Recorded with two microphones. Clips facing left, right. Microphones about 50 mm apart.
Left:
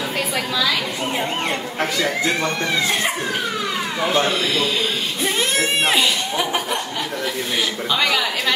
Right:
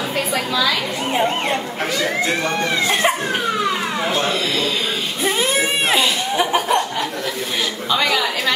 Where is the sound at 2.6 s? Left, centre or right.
Right.